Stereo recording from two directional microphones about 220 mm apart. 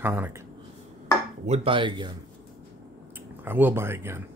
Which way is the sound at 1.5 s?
25° right (ahead or behind).